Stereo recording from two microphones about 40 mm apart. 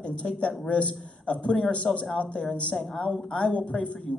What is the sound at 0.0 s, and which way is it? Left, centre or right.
A man's voice, left.